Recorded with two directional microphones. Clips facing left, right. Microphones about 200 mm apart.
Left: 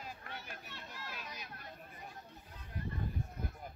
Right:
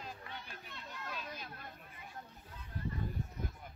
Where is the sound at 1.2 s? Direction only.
50° right (ahead or behind).